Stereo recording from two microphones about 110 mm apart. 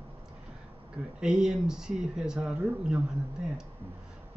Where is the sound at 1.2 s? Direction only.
5° right (ahead or behind).